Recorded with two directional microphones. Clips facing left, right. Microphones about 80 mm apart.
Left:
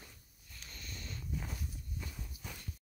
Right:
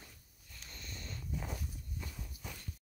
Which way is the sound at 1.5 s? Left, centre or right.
Centre.